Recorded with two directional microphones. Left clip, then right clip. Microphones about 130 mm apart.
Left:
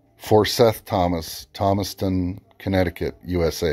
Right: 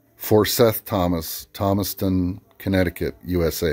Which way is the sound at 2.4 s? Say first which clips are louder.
Left 1 dB; 35° right (ahead or behind).